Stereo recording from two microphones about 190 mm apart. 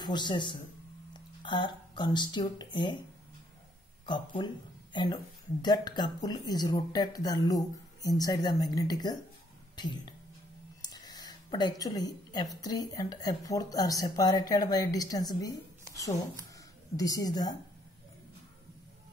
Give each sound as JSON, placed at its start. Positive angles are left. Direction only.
{"t": 0.0, "sound": "speech", "side_deg": 25}
{"t": 4.0, "sound": "speech", "side_deg": 25}
{"t": 10.8, "sound": "a sound", "side_deg": 20}
{"t": 12.6, "sound": "speech", "side_deg": 20}
{"t": 16.9, "sound": "speech", "side_deg": 20}